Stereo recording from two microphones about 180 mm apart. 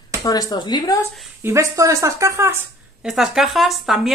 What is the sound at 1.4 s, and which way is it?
Speech, 15° right (ahead or behind).